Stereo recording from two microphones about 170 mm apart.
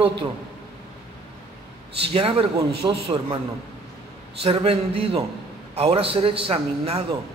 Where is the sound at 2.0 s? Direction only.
35° right (ahead or behind).